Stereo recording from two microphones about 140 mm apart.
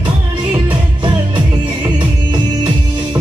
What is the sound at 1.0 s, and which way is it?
Music, 35° right (ahead or behind).